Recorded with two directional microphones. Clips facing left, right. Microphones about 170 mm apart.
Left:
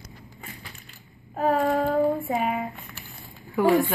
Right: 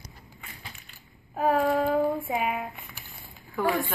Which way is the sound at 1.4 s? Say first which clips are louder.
Left 1 dB; centre (ahead or behind).